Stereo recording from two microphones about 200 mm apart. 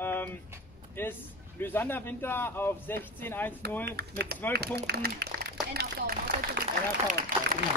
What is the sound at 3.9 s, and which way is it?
Speech, 55° right (ahead or behind).